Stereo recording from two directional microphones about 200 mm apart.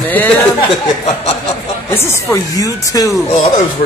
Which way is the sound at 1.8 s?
15° left (ahead or behind).